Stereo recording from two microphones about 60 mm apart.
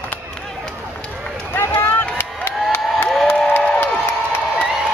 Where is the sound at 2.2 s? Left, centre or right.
Left.